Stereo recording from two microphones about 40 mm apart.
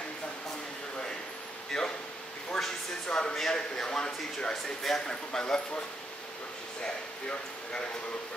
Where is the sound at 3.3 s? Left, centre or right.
Centre.